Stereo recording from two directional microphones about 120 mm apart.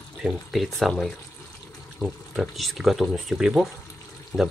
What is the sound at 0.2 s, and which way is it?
Speech, centre (ahead or behind).